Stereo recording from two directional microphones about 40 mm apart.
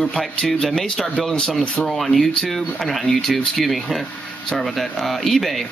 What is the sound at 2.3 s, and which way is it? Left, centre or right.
Speech, centre.